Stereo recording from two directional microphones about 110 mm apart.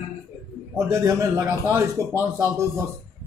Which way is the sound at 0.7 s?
25° right (ahead or behind).